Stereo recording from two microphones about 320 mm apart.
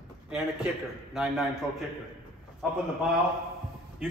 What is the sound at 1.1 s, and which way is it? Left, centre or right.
Speech, centre.